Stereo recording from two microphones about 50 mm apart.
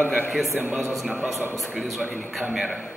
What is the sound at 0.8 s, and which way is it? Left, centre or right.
A man's voice, centre.